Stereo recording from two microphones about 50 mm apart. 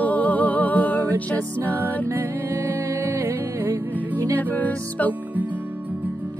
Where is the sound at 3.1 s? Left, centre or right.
Right.